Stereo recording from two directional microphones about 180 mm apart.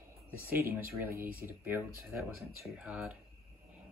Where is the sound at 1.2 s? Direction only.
50° right (ahead or behind).